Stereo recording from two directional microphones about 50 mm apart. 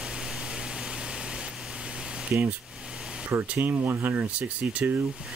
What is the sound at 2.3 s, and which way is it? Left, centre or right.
Speech, right.